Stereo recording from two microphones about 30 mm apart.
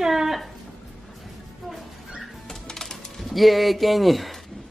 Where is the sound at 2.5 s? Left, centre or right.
Centre.